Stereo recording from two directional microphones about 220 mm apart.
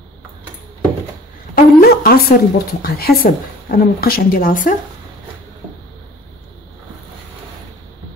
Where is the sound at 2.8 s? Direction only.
45° left (ahead or behind).